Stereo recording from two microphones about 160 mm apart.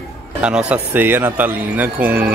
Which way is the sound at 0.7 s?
10° right (ahead or behind).